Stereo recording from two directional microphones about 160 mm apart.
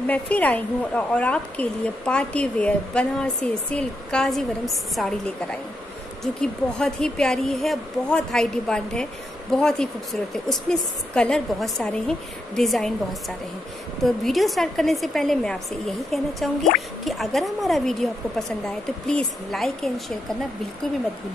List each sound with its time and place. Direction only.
0.0 s a woman's voice: 10° left (ahead or behind)
14.0 s a woman's voice: centre (ahead or behind)